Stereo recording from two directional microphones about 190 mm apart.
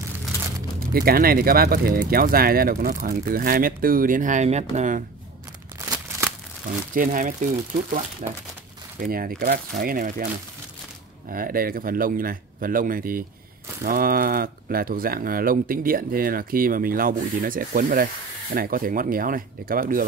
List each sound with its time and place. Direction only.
0.7 s speech: 50° right (ahead or behind)
6.9 s speech: 45° right (ahead or behind)
9.0 s speech: 50° right (ahead or behind)
11.2 s speech: 50° right (ahead or behind)